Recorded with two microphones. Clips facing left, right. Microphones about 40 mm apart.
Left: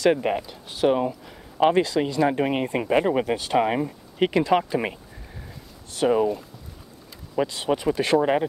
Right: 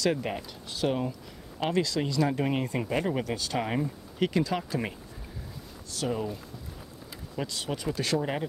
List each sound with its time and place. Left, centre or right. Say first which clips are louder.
0.0 s speech: left 8 dB; left
0.4 s speech: left 7 dB; centre; by 6.2 s left
7.3 s speech: left 10 dB; left